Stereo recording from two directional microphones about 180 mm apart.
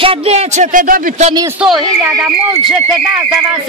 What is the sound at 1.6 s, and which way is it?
Speech, 5° right (ahead or behind).